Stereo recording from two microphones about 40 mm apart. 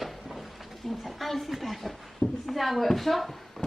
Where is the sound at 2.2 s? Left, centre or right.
Left.